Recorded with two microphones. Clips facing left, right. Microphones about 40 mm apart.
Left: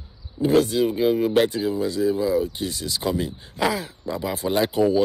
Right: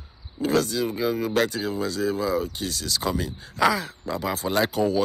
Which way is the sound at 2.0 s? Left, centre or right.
Centre.